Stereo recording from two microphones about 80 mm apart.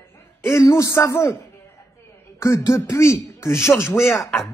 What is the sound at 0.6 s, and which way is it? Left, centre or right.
Speech, left.